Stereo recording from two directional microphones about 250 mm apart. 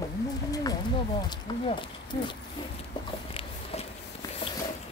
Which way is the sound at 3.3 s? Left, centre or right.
Left.